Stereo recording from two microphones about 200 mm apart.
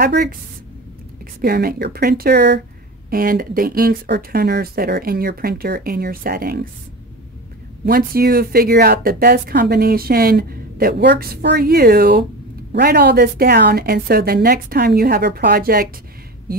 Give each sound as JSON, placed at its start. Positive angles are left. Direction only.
{"t": 0.0, "sound": "speech", "side_deg": -50}
{"t": 3.1, "sound": "speech", "side_deg": -45}
{"t": 7.8, "sound": "speech", "side_deg": -50}